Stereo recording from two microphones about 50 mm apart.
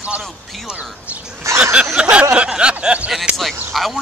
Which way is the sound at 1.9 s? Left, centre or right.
Right.